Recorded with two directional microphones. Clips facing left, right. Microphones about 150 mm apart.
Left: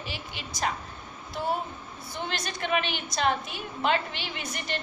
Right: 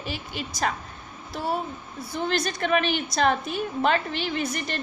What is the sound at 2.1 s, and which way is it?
A woman's voice, 40° right (ahead or behind).